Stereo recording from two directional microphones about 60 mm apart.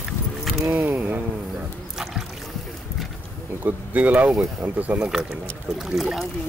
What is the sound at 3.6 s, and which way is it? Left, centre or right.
Speech, right.